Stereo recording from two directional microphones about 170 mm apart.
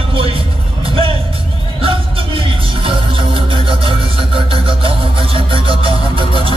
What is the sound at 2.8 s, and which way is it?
Music, 30° right (ahead or behind).